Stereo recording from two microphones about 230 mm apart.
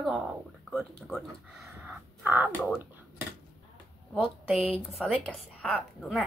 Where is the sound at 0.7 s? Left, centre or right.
Centre.